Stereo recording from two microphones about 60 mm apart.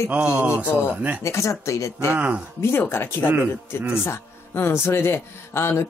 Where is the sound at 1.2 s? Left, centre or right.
Left.